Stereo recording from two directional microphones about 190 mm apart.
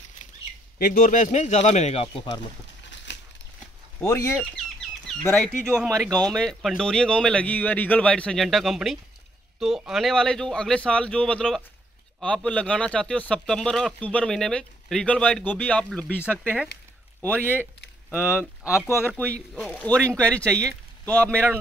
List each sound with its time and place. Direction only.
0.7 s speech: 45° left (ahead or behind); by 2.4 s 30° left (ahead or behind)
3.1 s crumpling: 70° left (ahead or behind)
4.0 s speech: 15° left (ahead or behind)
5.3 s speech: centre (ahead or behind)
5.9 s speech: 15° right (ahead or behind)
6.1 s speech: 5° left (ahead or behind)
17.2 s speech: 10° right (ahead or behind); by 20.5 s 5° left (ahead or behind)
20.6 s speech: 15° right (ahead or behind)